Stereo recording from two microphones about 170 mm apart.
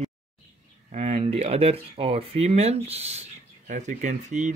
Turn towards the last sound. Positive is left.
turn(degrees=-45)  # may be behind; listen again after turning